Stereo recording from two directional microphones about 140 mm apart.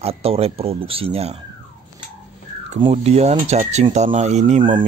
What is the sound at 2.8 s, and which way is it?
Speech, 45° right (ahead or behind).